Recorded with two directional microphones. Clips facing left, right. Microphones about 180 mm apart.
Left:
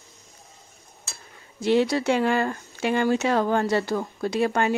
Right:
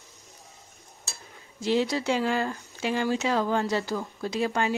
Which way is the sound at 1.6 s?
65° left (ahead or behind).